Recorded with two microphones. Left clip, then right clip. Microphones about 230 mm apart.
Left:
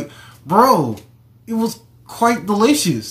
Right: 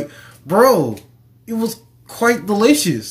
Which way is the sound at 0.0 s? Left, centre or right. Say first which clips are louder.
Right 3 dB; centre.